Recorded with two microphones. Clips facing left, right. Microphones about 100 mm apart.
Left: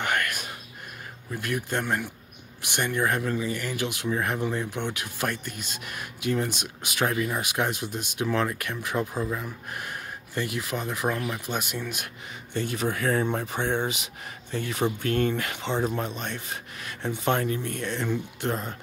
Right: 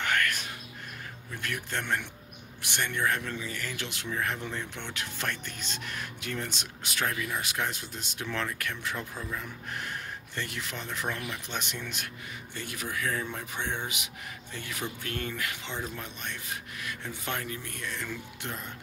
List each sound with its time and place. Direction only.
0.0 s a sound: 15° left (ahead or behind)
1.4 s speech: 15° left (ahead or behind)
9.1 s speech: 30° left (ahead or behind)
9.4 s speech: 10° left (ahead or behind)
11.1 s speech: 35° left (ahead or behind)
11.5 s speech: 10° left (ahead or behind)
12.5 s speech: 30° left (ahead or behind); by 13.5 s 50° left (ahead or behind)
13.5 s speech: 35° left (ahead or behind)
18.5 s speech: 40° left (ahead or behind)